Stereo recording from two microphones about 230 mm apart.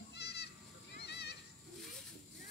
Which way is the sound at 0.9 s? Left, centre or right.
Left.